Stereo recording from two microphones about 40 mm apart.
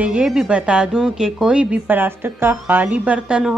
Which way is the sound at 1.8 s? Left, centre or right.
Right.